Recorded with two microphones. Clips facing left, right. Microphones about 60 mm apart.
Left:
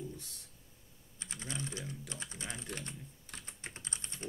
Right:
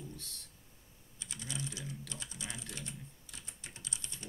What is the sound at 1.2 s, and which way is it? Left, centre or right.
Typing, left.